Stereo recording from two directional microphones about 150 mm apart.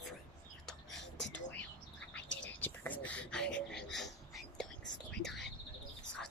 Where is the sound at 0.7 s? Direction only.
5° left (ahead or behind).